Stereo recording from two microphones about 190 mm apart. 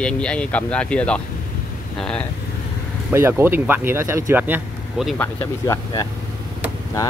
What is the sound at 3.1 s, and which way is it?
Speech, 10° right (ahead or behind).